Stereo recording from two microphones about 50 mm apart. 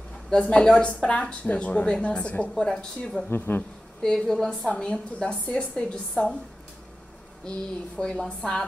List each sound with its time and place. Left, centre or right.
0.3 s a woman's voice: centre
2.5 s a woman's voice: centre
3.3 s speech: left
4.0 s a woman's voice: centre
7.5 s a woman's voice: centre